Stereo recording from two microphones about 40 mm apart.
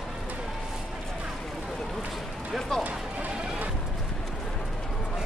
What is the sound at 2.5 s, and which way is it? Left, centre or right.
Music, centre.